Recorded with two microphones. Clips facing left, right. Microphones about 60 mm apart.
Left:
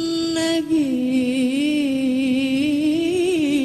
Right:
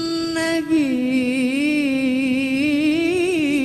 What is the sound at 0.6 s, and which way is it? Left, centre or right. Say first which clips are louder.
Music: right 1 dB; right.